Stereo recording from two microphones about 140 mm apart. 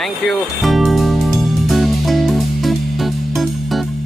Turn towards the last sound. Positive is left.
turn(degrees=0)  # may be behind; listen again after turning